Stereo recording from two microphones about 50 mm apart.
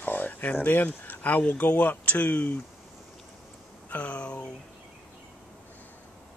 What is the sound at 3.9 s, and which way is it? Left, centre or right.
Speech, left.